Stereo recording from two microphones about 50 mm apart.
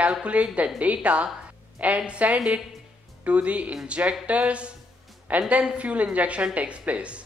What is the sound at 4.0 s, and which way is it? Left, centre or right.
A woman's voice, right.